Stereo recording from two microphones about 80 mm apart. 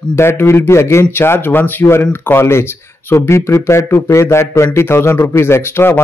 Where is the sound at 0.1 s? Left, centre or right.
Left.